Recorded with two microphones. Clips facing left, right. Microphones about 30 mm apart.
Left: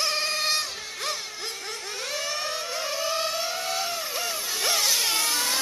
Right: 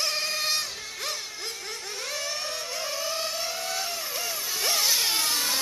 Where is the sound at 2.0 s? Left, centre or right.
Centre.